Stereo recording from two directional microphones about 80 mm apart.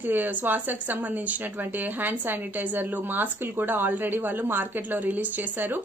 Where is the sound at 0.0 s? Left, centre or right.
Right.